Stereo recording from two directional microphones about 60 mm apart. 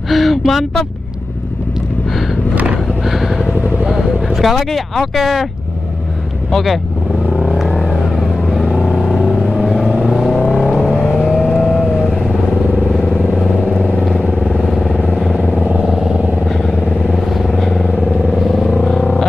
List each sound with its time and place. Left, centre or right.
0.1 s speech: centre
2.5 s vehicle: right
3.0 s vehicle: centre
3.8 s speech: centre
6.5 s speech: centre
7.2 s vehicle: centre
10.9 s vehicle: centre
11.2 s vehicle: centre
15.6 s vehicle: centre
16.4 s vehicle: centre